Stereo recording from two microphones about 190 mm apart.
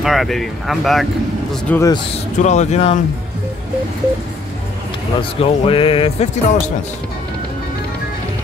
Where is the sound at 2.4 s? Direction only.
40° left (ahead or behind).